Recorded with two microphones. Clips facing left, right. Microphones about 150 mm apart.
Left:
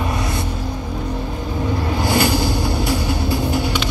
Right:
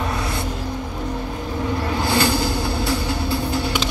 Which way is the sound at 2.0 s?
15° left (ahead or behind).